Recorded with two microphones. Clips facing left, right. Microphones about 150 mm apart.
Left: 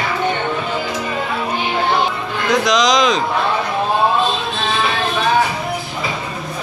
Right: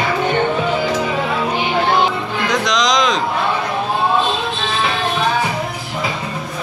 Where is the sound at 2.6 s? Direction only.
5° left (ahead or behind).